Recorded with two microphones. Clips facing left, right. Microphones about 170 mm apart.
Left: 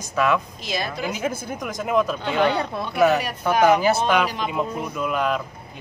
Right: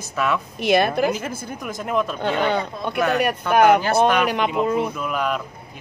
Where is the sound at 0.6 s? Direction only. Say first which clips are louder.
Right 10 dB; 65° right (ahead or behind).